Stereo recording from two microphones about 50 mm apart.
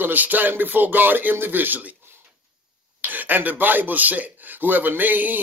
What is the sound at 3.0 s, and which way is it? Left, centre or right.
Speech, right.